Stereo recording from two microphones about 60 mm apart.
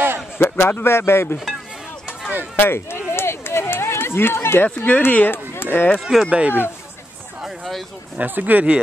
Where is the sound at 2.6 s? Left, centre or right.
Left.